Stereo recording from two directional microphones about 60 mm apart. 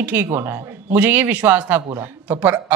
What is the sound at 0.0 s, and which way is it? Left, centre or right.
A woman's voice, right.